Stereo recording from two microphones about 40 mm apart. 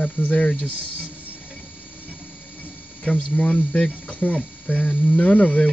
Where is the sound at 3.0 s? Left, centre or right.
Left.